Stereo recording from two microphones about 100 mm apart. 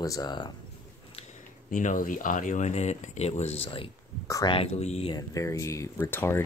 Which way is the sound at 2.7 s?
90° left.